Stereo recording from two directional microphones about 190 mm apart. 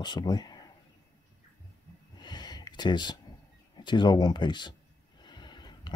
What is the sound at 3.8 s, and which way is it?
Speech, 25° left (ahead or behind).